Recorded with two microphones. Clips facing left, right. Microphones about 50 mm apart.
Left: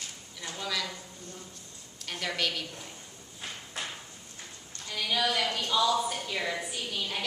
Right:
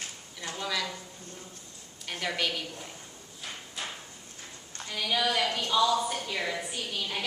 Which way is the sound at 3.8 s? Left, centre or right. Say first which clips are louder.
Left 1 dB; left.